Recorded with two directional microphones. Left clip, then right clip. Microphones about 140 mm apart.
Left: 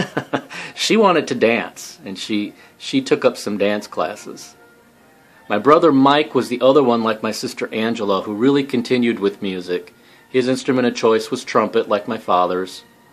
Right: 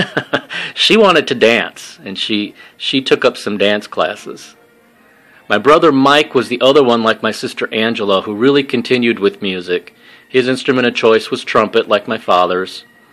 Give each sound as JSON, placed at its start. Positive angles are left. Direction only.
{"t": 0.0, "sound": "speech", "side_deg": -20}
{"t": 5.5, "sound": "a man's voice", "side_deg": -20}